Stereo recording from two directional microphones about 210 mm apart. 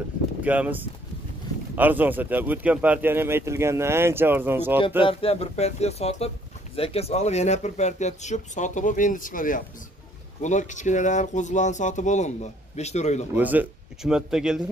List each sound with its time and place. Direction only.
0.4 s speech: 5° right (ahead or behind)
5.0 s speech: 30° left (ahead or behind)
13.4 s speech: 10° right (ahead or behind)